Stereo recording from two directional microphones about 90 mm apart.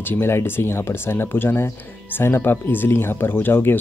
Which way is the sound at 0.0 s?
25° left (ahead or behind).